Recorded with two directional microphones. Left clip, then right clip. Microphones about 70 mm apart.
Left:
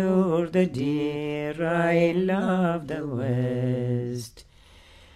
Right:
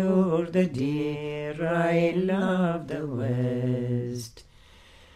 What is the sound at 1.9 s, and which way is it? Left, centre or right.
Female singing, left.